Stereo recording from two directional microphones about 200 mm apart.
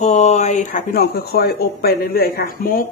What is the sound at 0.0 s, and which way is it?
Speech, 35° left (ahead or behind).